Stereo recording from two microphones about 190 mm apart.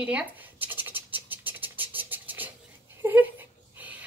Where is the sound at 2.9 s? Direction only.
10° right (ahead or behind).